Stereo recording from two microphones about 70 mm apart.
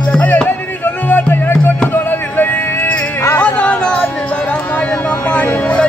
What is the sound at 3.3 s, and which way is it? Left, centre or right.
Music, left.